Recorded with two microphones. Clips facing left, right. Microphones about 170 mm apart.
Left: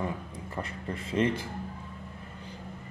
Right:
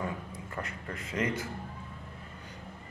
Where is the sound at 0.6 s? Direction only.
30° left (ahead or behind).